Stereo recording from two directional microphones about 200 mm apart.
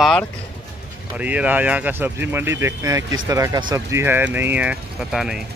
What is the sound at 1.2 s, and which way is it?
Speech, 5° right (ahead or behind).